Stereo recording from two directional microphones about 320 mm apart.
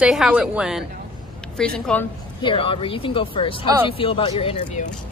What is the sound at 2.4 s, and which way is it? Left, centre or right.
Speech, centre.